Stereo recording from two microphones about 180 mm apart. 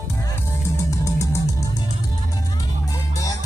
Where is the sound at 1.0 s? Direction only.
15° left (ahead or behind).